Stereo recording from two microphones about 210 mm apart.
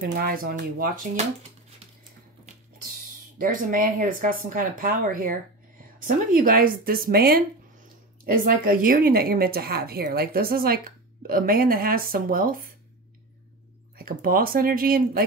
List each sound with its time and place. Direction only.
0.0 s a woman's voice: 45° right (ahead or behind)
3.3 s a woman's voice: 40° right (ahead or behind)
13.9 s a woman's voice: 45° right (ahead or behind)